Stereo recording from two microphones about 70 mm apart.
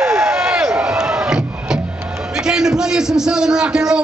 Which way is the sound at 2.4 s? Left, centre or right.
Centre.